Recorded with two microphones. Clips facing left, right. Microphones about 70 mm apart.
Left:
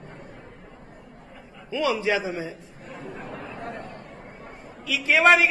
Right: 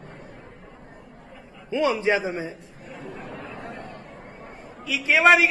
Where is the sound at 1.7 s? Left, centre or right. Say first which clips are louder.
Right 2 dB; right.